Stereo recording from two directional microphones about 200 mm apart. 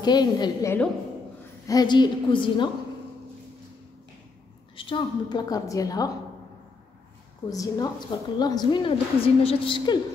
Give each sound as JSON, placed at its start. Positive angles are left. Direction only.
{"t": 0.0, "sound": "a woman's voice", "side_deg": 20}
{"t": 4.7, "sound": "a woman's voice", "side_deg": 25}
{"t": 7.4, "sound": "a woman's voice", "side_deg": 20}